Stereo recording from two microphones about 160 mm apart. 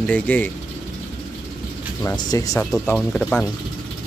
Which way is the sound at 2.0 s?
20° left (ahead or behind).